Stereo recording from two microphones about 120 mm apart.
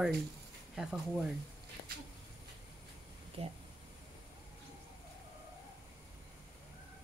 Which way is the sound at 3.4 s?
55° right (ahead or behind).